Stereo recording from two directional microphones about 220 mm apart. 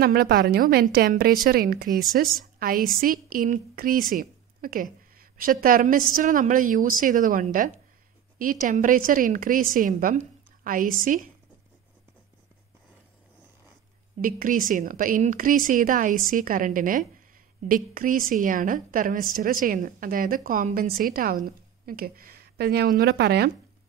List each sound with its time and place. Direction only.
0.0 s a woman's voice: 45° right (ahead or behind)
14.2 s a woman's voice: 40° right (ahead or behind)